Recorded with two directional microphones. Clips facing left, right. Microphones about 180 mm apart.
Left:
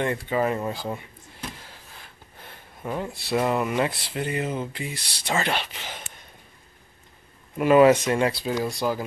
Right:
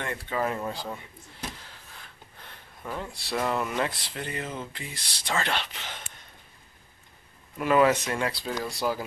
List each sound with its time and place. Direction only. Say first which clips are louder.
0.3 s speech: left 1 dB; 10° left (ahead or behind)
2.8 s speech: left 5 dB; 20° left (ahead or behind)
7.5 s speech: left 6 dB; 20° left (ahead or behind)